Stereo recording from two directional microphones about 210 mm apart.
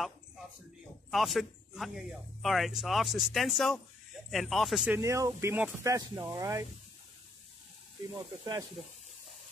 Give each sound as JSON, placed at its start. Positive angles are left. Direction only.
{"t": 1.1, "sound": "a man's voice", "side_deg": 0}
{"t": 8.1, "sound": "speech", "side_deg": -20}